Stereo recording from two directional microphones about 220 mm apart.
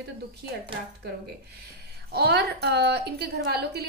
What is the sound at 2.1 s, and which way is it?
A woman's voice, 50° right (ahead or behind).